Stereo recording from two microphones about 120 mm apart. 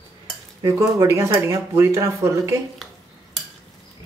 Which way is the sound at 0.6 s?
30° right (ahead or behind).